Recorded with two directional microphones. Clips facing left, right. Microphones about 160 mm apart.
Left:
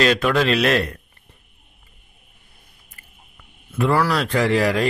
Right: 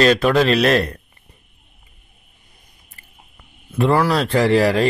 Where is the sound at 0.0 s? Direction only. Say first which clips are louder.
Right 3 dB; 35° right (ahead or behind).